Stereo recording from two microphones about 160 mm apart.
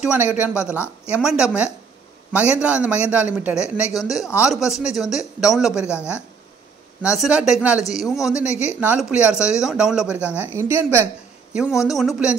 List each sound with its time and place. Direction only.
0.0 s a man's voice: 5° right (ahead or behind)
7.0 s a man's voice: 5° right (ahead or behind)
11.5 s a man's voice: 5° right (ahead or behind)